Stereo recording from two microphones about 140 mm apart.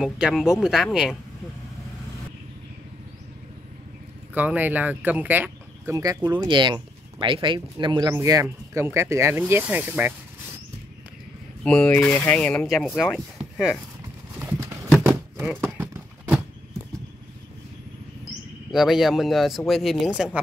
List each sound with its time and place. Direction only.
0.0 s speech: 5° right (ahead or behind)
4.3 s speech: 10° right (ahead or behind)
5.9 s speech: 25° right (ahead or behind)
8.1 s speech: 25° right (ahead or behind)
11.6 s speech: 10° left (ahead or behind)
15.4 s a sound: 20° right (ahead or behind)
18.7 s speech: centre (ahead or behind)